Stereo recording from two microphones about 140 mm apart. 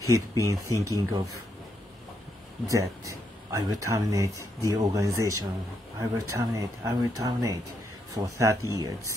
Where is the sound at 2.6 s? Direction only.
25° right (ahead or behind).